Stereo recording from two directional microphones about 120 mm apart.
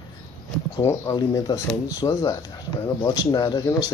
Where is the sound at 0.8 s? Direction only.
25° left (ahead or behind).